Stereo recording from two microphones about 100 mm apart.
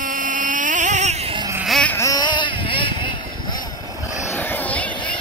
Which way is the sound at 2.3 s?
55° left (ahead or behind).